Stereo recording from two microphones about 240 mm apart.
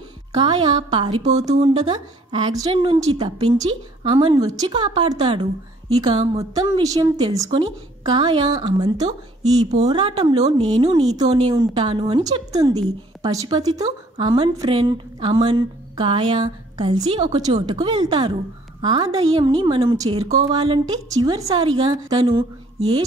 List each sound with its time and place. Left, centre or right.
0.4 s a woman's voice: centre